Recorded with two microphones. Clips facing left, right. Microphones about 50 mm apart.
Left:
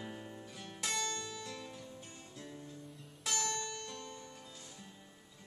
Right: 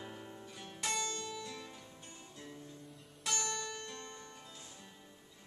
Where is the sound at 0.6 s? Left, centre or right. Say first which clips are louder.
Even; centre.